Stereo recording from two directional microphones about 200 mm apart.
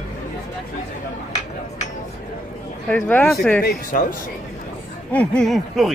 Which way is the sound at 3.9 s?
40° left (ahead or behind).